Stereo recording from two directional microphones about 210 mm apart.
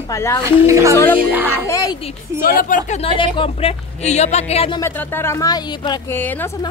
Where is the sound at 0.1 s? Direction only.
15° left (ahead or behind).